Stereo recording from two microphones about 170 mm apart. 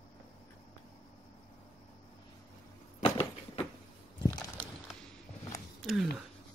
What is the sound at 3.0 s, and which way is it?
Vehicle, 35° left (ahead or behind).